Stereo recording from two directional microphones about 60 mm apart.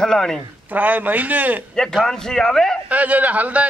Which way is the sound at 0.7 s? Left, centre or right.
Right.